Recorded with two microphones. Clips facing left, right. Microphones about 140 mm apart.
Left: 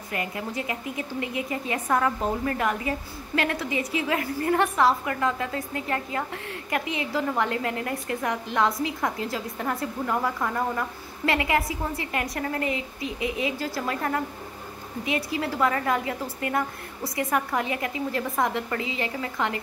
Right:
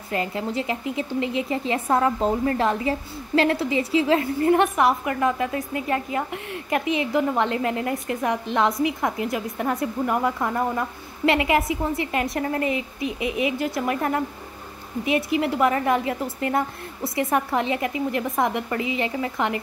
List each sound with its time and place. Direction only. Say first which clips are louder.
0.1 s a woman's voice: right 5 dB; 25° right (ahead or behind)